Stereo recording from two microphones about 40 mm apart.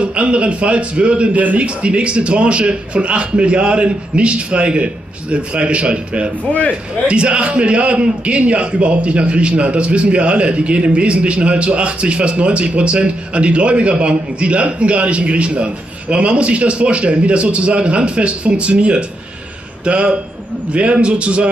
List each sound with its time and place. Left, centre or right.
0.0 s a man's voice: right